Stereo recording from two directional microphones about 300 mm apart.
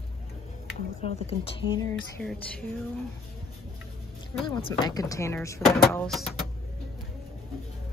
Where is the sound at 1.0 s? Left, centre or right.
Centre.